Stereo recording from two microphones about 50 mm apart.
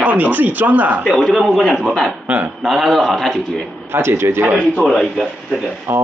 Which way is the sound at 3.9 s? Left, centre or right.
Right.